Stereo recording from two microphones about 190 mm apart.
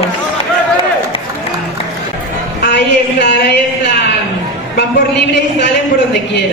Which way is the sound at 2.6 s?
65° left (ahead or behind).